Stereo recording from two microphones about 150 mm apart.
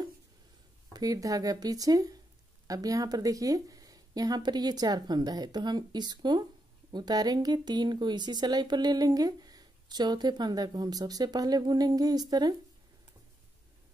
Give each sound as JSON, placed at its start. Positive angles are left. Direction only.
{"t": 0.9, "sound": "speech", "side_deg": -25}